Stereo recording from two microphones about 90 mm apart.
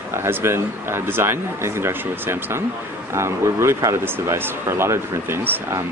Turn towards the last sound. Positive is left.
turn(degrees=-25)  # may be behind; listen again after turning